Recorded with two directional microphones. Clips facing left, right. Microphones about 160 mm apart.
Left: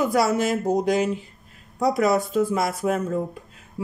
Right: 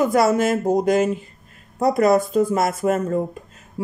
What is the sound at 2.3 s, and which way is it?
Speech, 45° right (ahead or behind).